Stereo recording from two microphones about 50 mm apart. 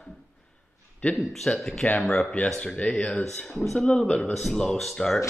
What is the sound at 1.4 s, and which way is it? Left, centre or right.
A man's voice, centre.